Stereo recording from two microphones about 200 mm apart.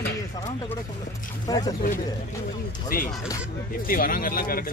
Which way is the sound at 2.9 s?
45° left (ahead or behind).